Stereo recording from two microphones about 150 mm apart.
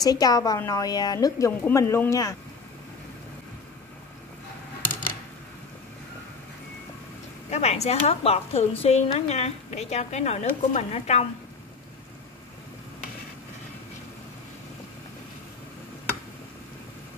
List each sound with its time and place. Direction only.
0.0 s speech: 25° left (ahead or behind)
7.4 s speech: 45° left (ahead or behind)